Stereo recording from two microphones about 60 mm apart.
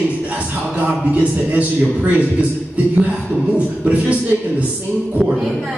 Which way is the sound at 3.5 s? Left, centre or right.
Right.